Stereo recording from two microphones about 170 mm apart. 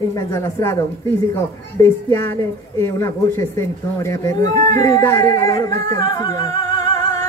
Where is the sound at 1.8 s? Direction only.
15° left (ahead or behind).